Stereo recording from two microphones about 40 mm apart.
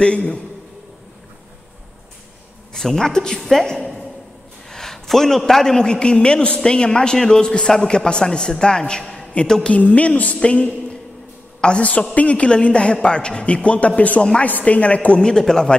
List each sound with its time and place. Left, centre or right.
0.0 s a man's voice: left
2.7 s a man's voice: centre
9.3 s a woman's voice: left
15.1 s a man's voice: centre